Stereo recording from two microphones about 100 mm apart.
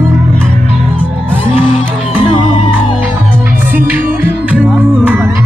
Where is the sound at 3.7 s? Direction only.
20° right (ahead or behind).